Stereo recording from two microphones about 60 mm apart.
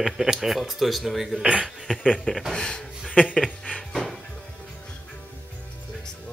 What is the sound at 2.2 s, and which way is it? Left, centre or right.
Speech, centre.